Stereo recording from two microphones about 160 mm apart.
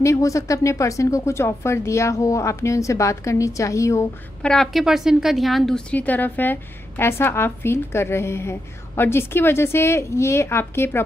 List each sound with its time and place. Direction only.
0.0 s a woman's voice: 20° left (ahead or behind)
4.4 s a woman's voice: 5° left (ahead or behind)